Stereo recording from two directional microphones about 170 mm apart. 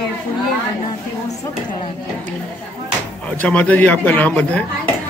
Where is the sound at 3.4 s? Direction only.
10° left (ahead or behind).